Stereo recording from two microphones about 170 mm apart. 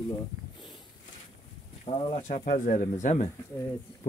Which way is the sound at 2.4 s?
55° left (ahead or behind).